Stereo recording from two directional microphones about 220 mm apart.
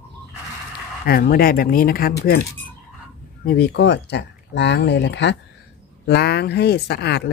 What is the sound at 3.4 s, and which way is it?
Speech, 45° left (ahead or behind).